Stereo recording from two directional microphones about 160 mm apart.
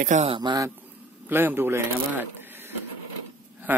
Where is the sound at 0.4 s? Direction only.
25° right (ahead or behind).